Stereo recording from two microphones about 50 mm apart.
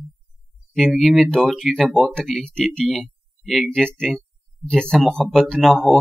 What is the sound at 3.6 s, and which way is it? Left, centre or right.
Speech, centre.